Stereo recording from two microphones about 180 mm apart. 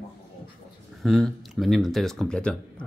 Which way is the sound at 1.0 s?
Centre (ahead or behind).